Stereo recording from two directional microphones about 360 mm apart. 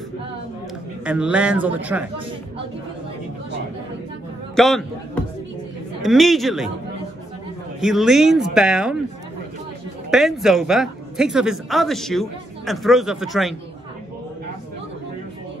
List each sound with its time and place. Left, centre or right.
1.0 s speech: centre
4.6 s speech: centre
7.8 s speech: centre
10.1 s speech: centre